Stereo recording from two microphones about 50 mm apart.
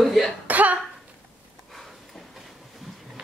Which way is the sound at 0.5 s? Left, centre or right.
Right.